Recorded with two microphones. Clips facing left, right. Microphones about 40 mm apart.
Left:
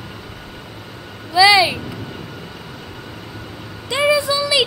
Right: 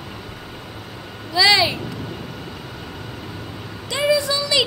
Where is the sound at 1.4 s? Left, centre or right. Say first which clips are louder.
Left 4 dB; centre.